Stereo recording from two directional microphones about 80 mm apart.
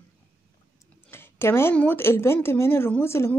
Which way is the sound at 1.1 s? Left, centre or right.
Left.